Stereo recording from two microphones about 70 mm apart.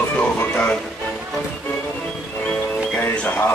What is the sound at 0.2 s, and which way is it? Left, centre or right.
Music, left.